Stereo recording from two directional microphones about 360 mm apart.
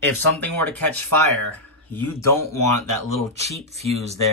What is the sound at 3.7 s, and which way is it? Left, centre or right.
Speech, centre.